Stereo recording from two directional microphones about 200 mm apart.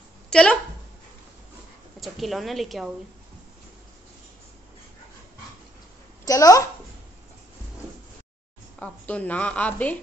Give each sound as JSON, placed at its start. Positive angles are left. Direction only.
{"t": 0.3, "sound": "speech", "side_deg": 5}
{"t": 2.0, "sound": "a woman's voice", "side_deg": 0}
{"t": 6.2, "sound": "a woman's voice", "side_deg": 15}
{"t": 8.7, "sound": "a woman's voice", "side_deg": 5}